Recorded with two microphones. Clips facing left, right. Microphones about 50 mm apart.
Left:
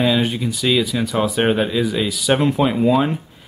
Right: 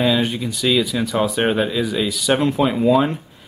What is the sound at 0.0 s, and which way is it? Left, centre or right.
Speech, centre.